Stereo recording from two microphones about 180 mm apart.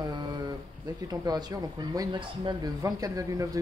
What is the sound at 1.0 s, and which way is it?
Speech, 20° right (ahead or behind).